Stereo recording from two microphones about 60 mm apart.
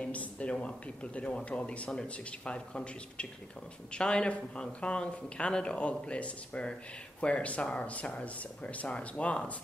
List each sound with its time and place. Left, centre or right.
0.0 s speech: left